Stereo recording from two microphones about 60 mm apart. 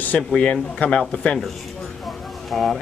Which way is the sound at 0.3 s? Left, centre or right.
Centre.